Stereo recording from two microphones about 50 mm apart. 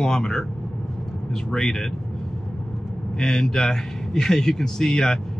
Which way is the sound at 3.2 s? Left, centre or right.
Centre.